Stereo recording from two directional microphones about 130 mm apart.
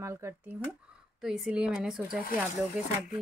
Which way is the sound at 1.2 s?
5° right (ahead or behind).